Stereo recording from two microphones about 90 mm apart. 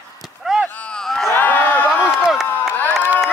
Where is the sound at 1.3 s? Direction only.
20° left (ahead or behind).